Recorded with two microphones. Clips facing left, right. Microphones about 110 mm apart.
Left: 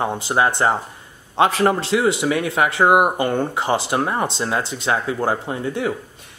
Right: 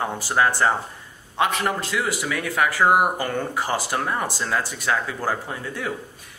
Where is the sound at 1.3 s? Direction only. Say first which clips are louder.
Left 6 dB; 30° left (ahead or behind).